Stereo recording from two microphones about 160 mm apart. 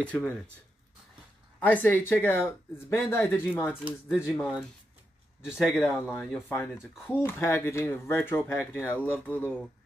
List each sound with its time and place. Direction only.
0.0 s speech: 10° left (ahead or behind)
1.6 s speech: 10° left (ahead or behind)
4.4 s speech: centre (ahead or behind)
5.9 s speech: 15° left (ahead or behind)